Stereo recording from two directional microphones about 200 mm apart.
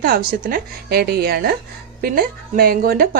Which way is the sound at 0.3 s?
45° right (ahead or behind).